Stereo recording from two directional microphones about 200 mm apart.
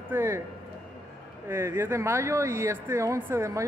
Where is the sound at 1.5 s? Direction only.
10° right (ahead or behind).